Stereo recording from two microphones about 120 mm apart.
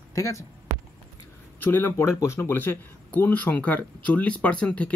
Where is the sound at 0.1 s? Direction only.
25° left (ahead or behind).